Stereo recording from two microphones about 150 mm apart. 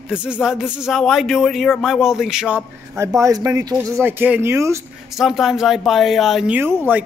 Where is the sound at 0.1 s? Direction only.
5° right (ahead or behind).